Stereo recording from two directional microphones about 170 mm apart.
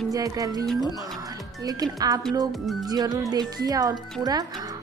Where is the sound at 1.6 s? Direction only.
20° right (ahead or behind).